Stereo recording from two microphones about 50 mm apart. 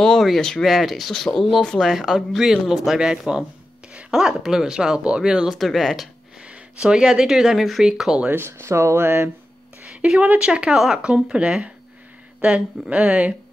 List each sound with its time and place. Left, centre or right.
0.2 s speech: centre
3.0 s speech: centre
5.5 s speech: centre
6.4 s speech: centre
7.8 s speech: centre
8.3 s speech: right
9.0 s speech: right
10.0 s speech: right